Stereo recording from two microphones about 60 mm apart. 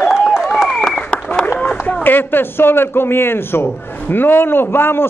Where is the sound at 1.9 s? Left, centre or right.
Left.